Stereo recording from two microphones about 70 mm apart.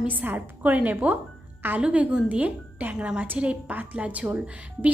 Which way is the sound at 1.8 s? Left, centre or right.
Centre.